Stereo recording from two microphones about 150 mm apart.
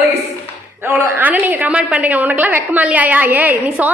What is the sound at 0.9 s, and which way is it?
A woman's voice, 10° right (ahead or behind).